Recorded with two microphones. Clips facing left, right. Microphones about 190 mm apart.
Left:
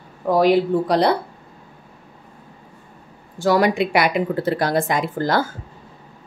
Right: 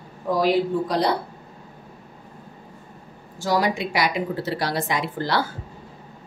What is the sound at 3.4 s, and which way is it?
A woman's voice, 60° left (ahead or behind).